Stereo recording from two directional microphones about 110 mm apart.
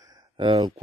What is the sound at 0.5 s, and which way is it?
Speech, 40° right (ahead or behind).